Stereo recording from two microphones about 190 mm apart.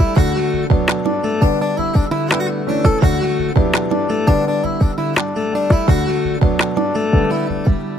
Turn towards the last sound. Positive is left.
turn(degrees=0)  # may be behind; listen again after turning